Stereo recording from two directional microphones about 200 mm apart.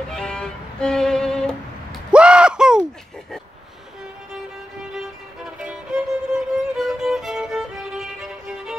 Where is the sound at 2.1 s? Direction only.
5° right (ahead or behind).